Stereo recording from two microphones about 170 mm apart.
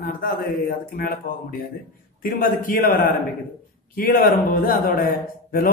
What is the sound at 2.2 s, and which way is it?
A man's voice, 55° left (ahead or behind).